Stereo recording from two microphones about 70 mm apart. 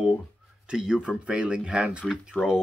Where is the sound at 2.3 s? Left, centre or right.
Left.